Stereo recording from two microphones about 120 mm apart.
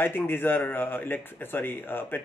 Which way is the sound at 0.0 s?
20° left (ahead or behind).